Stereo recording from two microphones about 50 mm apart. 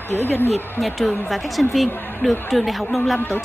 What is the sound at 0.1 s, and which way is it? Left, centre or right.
Speech, left.